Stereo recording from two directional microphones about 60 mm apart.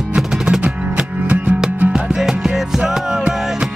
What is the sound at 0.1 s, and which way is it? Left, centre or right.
Music, centre.